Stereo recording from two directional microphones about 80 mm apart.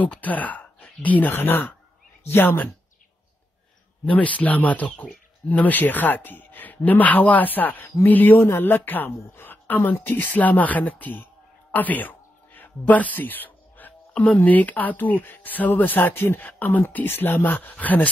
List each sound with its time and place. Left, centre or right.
0.0 s speech: centre
4.0 s speech: centre
11.7 s a sound: left
14.2 s speech: centre